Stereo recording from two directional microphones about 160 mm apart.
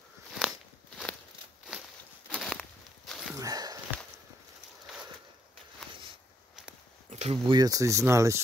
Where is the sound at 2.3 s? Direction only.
5° left (ahead or behind).